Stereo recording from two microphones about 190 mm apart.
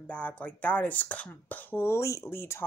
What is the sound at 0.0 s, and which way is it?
A woman's voice, 5° left (ahead or behind).